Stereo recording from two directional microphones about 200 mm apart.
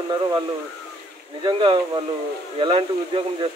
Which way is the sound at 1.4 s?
25° right (ahead or behind).